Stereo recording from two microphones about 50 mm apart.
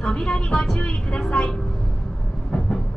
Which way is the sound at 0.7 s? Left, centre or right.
Left.